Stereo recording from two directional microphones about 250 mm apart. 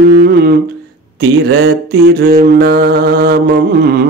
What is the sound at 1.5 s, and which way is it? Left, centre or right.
Mantra, right.